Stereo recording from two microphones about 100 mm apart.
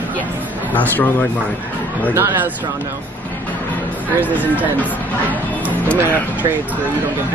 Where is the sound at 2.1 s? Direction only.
25° right (ahead or behind).